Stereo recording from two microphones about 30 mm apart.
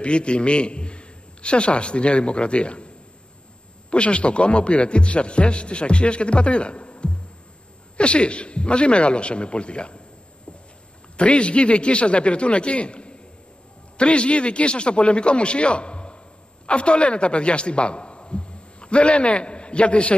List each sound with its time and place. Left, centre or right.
0.0 s a man's voice: left
3.9 s a man's voice: left
11.1 s a man's voice: left